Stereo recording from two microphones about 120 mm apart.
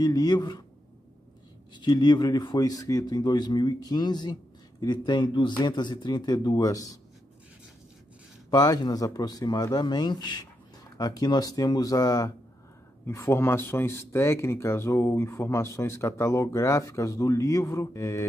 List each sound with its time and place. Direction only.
0.0 s speech: 30° left (ahead or behind)
1.7 s speech: 40° left (ahead or behind)
8.5 s speech: 35° left (ahead or behind)